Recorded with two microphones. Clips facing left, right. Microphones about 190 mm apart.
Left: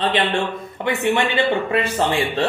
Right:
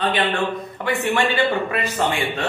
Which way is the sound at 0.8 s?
20° left (ahead or behind).